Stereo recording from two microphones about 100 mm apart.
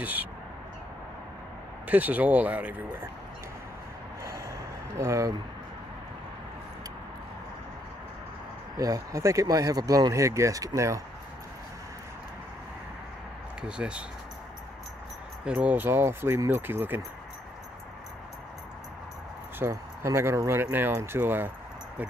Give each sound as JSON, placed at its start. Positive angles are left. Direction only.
{"t": 0.0, "sound": "speech", "side_deg": -15}
{"t": 1.9, "sound": "speech", "side_deg": -15}
{"t": 4.2, "sound": "gasp", "side_deg": -30}
{"t": 8.7, "sound": "speech", "side_deg": -35}
{"t": 13.6, "sound": "speech", "side_deg": -10}
{"t": 15.4, "sound": "speech", "side_deg": -15}
{"t": 19.6, "sound": "speech", "side_deg": -30}